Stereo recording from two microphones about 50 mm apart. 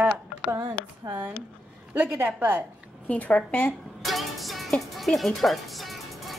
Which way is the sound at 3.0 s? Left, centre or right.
Left.